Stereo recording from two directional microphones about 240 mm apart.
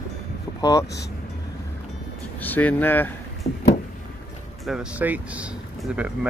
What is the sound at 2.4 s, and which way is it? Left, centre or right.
Speech, centre.